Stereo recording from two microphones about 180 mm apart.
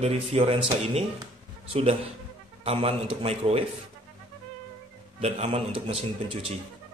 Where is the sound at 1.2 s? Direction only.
35° right (ahead or behind).